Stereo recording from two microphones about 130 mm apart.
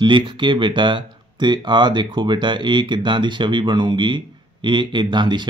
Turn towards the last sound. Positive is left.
turn(degrees=-35)  # may be behind; listen again after turning